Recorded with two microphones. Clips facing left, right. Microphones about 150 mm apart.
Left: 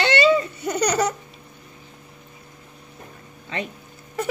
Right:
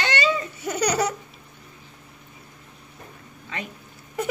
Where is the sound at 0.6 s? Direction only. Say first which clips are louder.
Left 2 dB; 5° right (ahead or behind).